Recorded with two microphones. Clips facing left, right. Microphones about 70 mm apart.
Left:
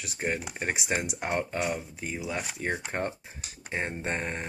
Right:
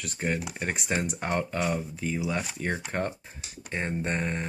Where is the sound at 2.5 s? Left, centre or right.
Centre.